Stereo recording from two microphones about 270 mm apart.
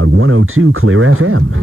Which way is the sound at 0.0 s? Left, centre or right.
Right.